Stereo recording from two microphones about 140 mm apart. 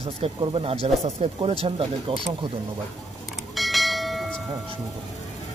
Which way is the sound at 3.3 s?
Centre (ahead or behind).